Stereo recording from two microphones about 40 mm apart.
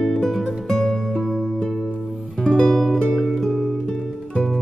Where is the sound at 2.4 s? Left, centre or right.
Left.